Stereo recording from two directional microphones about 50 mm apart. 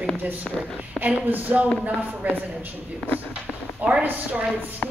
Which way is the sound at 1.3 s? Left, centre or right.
Right.